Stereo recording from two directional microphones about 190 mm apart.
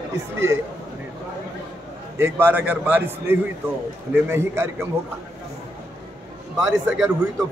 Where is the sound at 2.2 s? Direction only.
10° right (ahead or behind).